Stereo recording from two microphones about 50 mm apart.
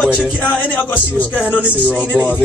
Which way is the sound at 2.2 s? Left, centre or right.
Right.